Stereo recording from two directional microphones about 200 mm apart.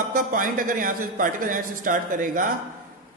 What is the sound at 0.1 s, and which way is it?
A man's voice, 40° right (ahead or behind).